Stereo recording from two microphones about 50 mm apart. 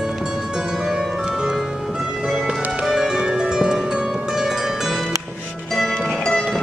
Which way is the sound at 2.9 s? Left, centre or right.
Centre.